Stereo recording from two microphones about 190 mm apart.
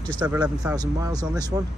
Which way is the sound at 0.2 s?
15° right (ahead or behind).